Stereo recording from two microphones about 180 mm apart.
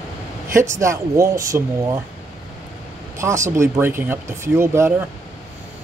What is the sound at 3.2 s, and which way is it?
Speech, 15° right (ahead or behind).